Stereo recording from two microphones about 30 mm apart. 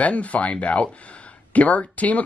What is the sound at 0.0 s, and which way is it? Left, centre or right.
Speech, left.